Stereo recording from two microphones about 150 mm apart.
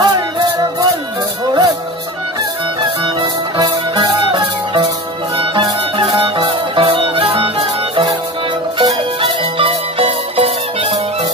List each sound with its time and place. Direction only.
0.0 s music: 25° right (ahead or behind)
3.2 s music: 30° right (ahead or behind)